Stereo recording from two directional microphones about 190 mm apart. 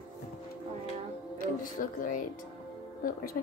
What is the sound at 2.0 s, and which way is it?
Speech, 45° left (ahead or behind).